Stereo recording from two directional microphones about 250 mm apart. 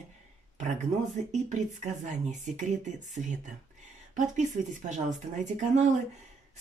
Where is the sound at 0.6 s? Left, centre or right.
Right.